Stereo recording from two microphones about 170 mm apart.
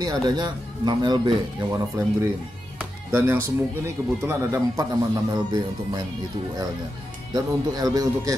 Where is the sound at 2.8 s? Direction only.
15° right (ahead or behind).